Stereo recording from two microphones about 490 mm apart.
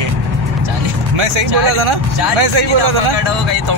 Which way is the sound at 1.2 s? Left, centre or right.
Right.